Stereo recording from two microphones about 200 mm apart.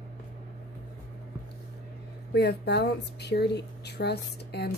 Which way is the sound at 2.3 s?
55° left (ahead or behind).